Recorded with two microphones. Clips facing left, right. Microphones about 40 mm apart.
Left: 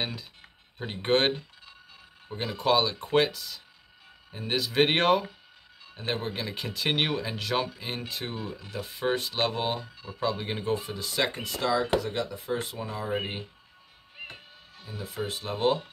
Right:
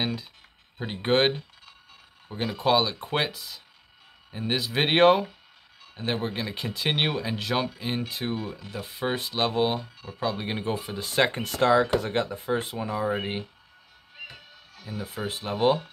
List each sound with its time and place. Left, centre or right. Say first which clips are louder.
0.0 s speech: right 4 dB; centre
11.0 s speech: right 5 dB; right
11.4 s speech: right 6 dB; right
12.0 s speech: right 4 dB; right
12.8 s speech: right 4 dB; centre
14.9 s speech: right 1 dB; centre